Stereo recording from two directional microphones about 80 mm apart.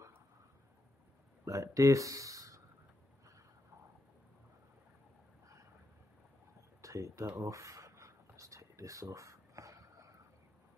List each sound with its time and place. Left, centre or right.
1.4 s speech: right
6.8 s speech: right
7.3 s a sound: right